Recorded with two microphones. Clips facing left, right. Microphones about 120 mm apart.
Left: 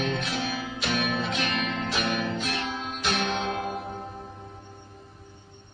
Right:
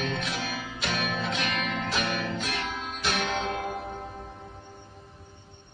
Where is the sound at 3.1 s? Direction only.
60° left (ahead or behind).